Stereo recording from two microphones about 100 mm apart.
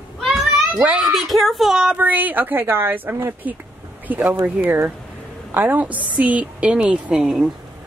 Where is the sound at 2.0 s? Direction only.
15° right (ahead or behind).